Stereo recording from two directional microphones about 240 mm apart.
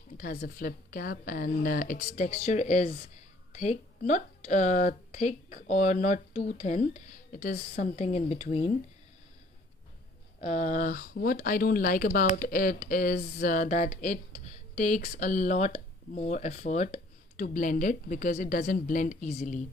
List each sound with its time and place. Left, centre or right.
0.2 s speech: left
10.4 s speech: left